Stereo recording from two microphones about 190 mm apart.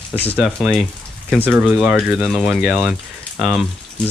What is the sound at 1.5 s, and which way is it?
Speech, centre (ahead or behind).